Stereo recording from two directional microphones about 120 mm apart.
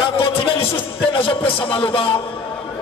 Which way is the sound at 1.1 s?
50° left (ahead or behind).